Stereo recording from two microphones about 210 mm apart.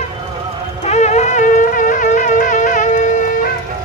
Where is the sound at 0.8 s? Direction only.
35° left (ahead or behind).